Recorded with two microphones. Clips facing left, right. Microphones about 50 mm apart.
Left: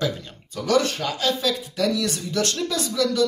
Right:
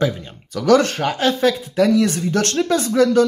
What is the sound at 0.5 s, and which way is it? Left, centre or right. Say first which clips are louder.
Speech: right 6 dB; right.